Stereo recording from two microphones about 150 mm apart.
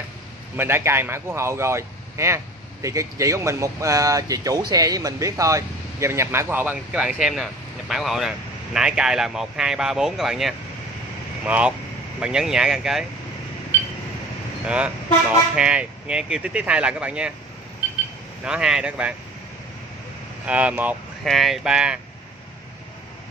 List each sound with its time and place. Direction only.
0.6 s a man's voice: 15° right (ahead or behind)
14.7 s speech: 10° right (ahead or behind)
18.4 s speech: 5° right (ahead or behind)
20.4 s speech: 10° right (ahead or behind)
21.2 s speech: centre (ahead or behind)